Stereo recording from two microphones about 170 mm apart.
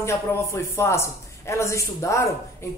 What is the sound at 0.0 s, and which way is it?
Speech, 15° left (ahead or behind).